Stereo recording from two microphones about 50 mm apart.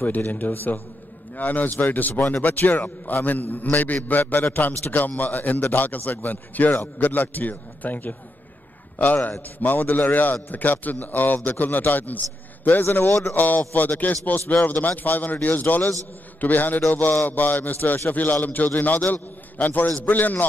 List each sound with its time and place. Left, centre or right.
0.0 s a man's voice: left